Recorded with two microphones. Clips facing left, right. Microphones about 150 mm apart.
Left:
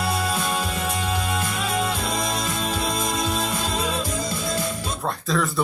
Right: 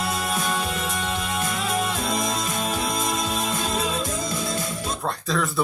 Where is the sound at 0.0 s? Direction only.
25° left (ahead or behind).